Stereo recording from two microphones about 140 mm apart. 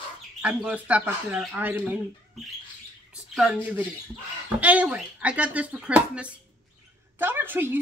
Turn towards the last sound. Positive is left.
turn(degrees=-15)  # may be behind; listen again after turning